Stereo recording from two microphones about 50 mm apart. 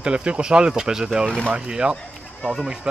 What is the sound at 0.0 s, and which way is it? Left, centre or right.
Speech, right.